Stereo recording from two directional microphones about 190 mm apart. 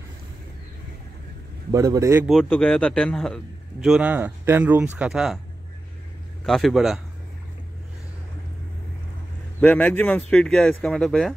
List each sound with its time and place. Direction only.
1.7 s a man's voice: 15° right (ahead or behind)
2.2 s a man's voice: centre (ahead or behind)
6.4 s a man's voice: centre (ahead or behind)
9.6 s a man's voice: 5° left (ahead or behind)